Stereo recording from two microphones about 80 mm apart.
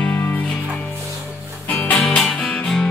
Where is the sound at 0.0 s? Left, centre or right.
Centre.